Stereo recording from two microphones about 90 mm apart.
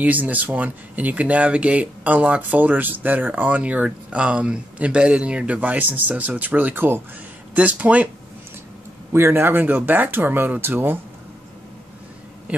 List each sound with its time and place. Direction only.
0.0 s speech: 15° right (ahead or behind)
9.1 s speech: 25° right (ahead or behind)
12.5 s speech: 20° right (ahead or behind)